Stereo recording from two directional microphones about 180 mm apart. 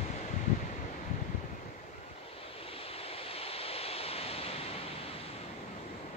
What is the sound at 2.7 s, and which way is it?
Waves, 35° left (ahead or behind).